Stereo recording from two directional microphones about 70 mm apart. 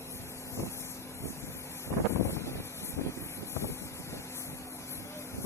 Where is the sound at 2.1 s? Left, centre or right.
Left.